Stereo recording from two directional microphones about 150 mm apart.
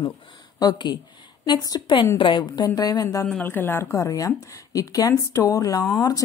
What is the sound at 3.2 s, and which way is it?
A woman's voice, 10° left (ahead or behind).